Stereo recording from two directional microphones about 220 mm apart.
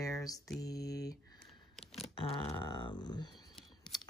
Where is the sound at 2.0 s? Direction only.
25° left (ahead or behind).